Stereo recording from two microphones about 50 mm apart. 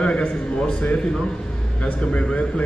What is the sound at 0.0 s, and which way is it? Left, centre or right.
A man's voice, left.